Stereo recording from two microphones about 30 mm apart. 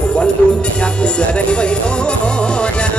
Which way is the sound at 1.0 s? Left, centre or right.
Left.